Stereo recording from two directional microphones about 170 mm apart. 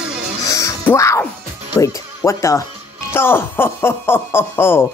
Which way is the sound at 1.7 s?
15° left (ahead or behind).